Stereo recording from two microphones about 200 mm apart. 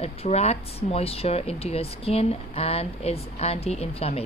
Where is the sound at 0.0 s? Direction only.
30° left (ahead or behind).